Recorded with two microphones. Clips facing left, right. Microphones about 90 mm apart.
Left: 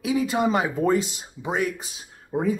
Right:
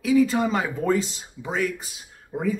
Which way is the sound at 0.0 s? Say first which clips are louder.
Right 3 dB; 20° left (ahead or behind).